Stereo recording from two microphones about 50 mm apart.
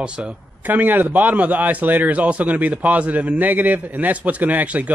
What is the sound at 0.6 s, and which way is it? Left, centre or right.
A man's voice, right.